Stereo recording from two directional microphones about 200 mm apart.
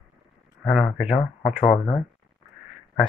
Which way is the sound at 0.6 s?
Centre (ahead or behind).